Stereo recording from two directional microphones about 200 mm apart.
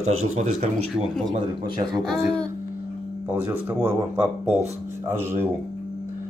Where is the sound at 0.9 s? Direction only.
Centre (ahead or behind).